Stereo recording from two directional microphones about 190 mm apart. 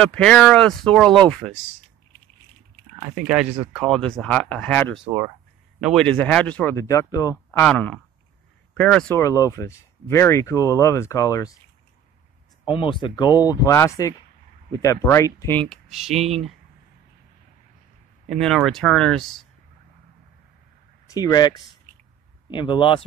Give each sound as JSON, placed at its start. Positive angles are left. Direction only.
{"t": 0.0, "sound": "speech", "side_deg": 5}
{"t": 3.3, "sound": "speech", "side_deg": -5}
{"t": 5.0, "sound": "speech", "side_deg": -15}
{"t": 5.8, "sound": "speech", "side_deg": 0}
{"t": 7.6, "sound": "speech", "side_deg": 5}
{"t": 9.1, "sound": "speech", "side_deg": 15}
{"t": 12.6, "sound": "speech", "side_deg": 25}
{"t": 18.3, "sound": "speech", "side_deg": 0}
{"t": 21.1, "sound": "speech", "side_deg": 20}